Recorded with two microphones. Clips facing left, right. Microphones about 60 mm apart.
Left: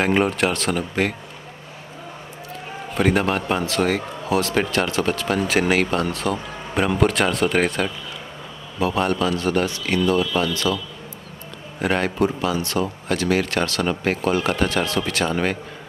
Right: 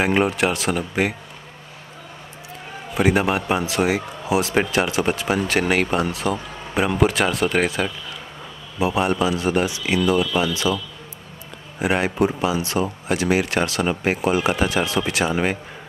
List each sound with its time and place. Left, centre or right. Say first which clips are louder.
0.0 s speech: even; centre
2.9 s speech: right 1 dB; centre
5.4 s speech: left 3 dB; centre
8.7 s speech: right 1 dB; centre
11.8 s speech: right 1 dB; centre